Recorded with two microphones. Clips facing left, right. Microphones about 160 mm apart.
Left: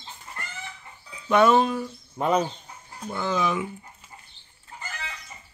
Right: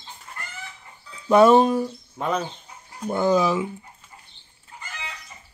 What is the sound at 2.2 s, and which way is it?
Speech, 10° left (ahead or behind).